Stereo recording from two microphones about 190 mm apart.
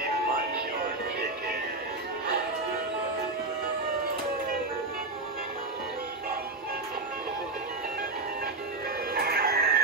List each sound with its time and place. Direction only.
9.1 s music: 55° right (ahead or behind)